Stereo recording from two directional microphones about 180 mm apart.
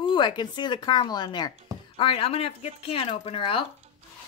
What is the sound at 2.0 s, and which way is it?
Speech, 30° left (ahead or behind).